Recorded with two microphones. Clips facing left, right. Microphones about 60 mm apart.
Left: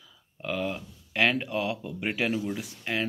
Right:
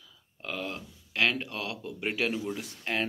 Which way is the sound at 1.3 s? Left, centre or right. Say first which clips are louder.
Left 6 dB; centre.